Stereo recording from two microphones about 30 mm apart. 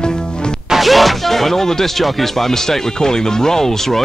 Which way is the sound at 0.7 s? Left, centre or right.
Centre.